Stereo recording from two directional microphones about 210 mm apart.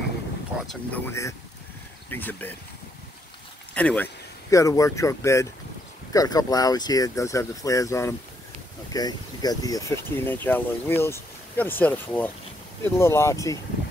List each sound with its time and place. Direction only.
0.7 s speech: 10° left (ahead or behind)
3.7 s speech: 5° left (ahead or behind)